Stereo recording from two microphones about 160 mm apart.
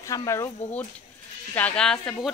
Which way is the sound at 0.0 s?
20° left (ahead or behind).